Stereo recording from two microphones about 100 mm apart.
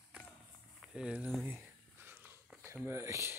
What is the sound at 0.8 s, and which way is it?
Speech, 5° right (ahead or behind).